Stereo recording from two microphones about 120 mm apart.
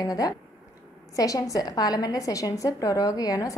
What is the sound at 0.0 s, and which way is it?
A woman's voice, 30° left (ahead or behind).